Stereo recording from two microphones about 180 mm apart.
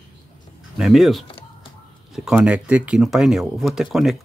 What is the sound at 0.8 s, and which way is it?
Speech, centre (ahead or behind).